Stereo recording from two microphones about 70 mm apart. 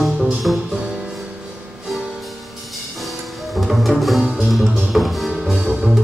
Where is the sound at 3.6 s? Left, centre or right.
Centre.